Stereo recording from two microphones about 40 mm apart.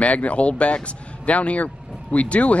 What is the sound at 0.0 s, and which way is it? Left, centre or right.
Speech, left.